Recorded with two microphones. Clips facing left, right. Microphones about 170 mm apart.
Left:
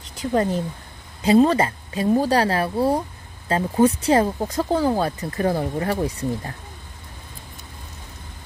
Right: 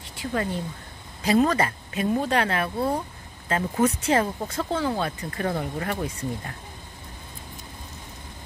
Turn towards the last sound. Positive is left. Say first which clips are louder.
# left 5 dB
turn(degrees=35)  # may be behind; listen again after turning